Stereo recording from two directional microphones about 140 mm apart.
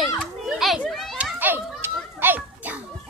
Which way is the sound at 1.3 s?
15° right (ahead or behind).